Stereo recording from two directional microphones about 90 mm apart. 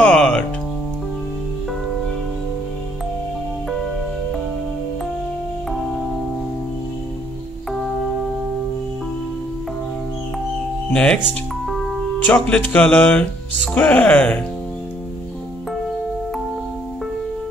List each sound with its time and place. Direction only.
0.0 s music: 10° left (ahead or behind)
10.9 s speech: 10° left (ahead or behind)
12.2 s speech: 15° left (ahead or behind)